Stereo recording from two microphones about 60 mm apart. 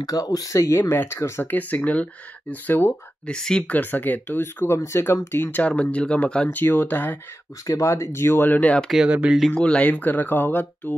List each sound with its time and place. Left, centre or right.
0.0 s speech: left
1.4 s speech: left
3.3 s speech: centre
3.6 s speech: left
4.7 s speech: left
5.3 s speech: left
5.6 s speech: left
6.5 s speech: left
7.6 s speech: left
9.1 s speech: right
9.5 s speech: centre; by 11.0 s left